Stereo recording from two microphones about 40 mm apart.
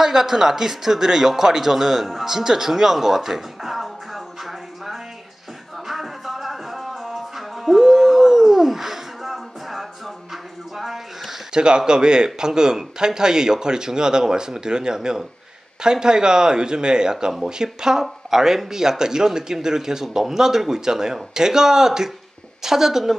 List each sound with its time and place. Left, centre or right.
0.0 s speech: centre
5.9 s music: centre
11.5 s a man's voice: right